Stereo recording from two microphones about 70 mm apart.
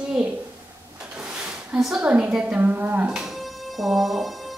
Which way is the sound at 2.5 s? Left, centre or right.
Right.